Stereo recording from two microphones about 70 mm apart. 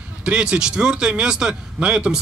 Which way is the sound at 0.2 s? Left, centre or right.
Centre.